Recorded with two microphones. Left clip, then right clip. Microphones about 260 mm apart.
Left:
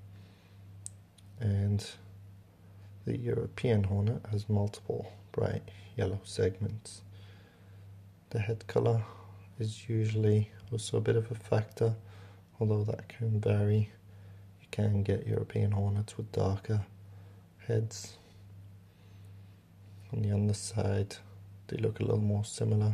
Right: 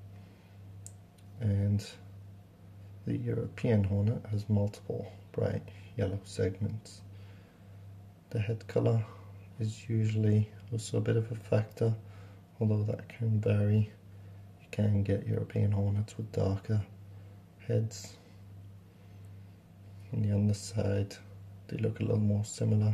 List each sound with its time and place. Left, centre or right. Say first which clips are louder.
1.4 s a sound: right 1 dB; left
3.1 s speech: left 2 dB; left
8.3 s speech: left 2 dB; left
20.1 s speech: right 1 dB; centre